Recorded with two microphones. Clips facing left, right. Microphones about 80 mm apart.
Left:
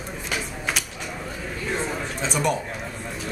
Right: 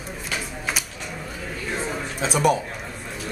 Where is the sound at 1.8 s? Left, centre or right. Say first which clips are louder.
Right 1 dB; centre.